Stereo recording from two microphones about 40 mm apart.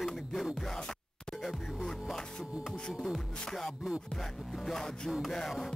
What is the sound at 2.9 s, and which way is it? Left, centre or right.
Music, centre.